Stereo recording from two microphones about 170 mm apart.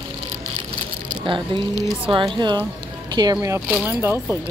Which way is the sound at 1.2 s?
30° right (ahead or behind).